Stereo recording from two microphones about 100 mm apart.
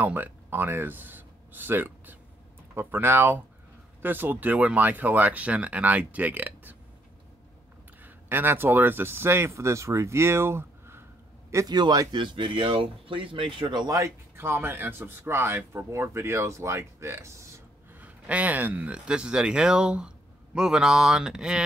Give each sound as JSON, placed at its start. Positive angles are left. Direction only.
{"t": 0.0, "sound": "speech", "side_deg": -20}
{"t": 8.0, "sound": "speech", "side_deg": -20}
{"t": 11.5, "sound": "speech", "side_deg": -45}
{"t": 13.9, "sound": "speech", "side_deg": -30}
{"t": 18.0, "sound": "speech", "side_deg": -15}